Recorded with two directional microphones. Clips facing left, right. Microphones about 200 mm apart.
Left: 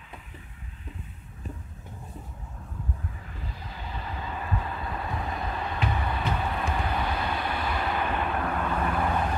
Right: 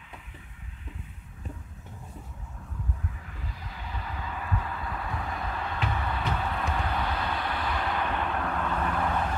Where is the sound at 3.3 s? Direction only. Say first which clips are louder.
Left 2 dB; 30° left (ahead or behind); by 6.6 s 15° left (ahead or behind).